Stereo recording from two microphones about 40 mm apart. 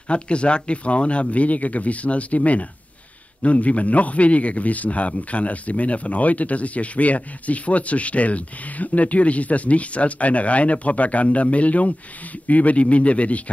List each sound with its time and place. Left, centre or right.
0.1 s a man's voice: left